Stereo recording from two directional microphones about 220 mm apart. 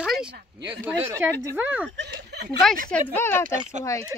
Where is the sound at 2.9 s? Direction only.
10° left (ahead or behind).